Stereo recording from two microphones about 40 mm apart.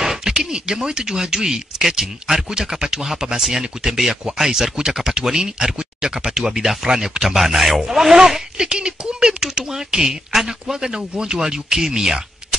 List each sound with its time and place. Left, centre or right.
0.0 s speech: centre
7.2 s speech: centre